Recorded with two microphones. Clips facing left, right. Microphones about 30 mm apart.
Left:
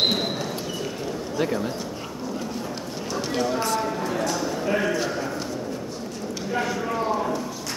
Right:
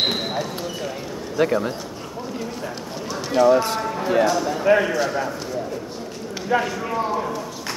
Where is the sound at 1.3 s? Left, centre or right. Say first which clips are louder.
Right 6 dB; centre.